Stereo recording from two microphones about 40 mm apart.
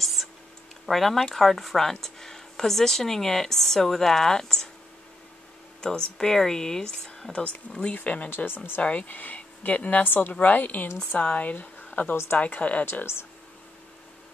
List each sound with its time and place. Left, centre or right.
0.0 s a sound: centre
0.8 s speech: centre
5.8 s speech: centre
7.9 s speech: left
10.0 s a woman's voice: left
10.4 s a woman's voice: left
11.5 s speech: left
13.0 s speech: left